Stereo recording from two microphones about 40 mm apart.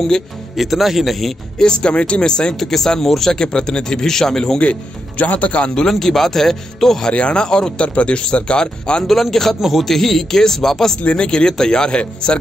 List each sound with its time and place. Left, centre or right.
0.6 s speech: centre
1.6 s speech: left
2.6 s speech: centre
4.6 s speech: left
5.8 s speech: centre
7.1 s speech: left
9.0 s speech: centre
11.0 s speech: left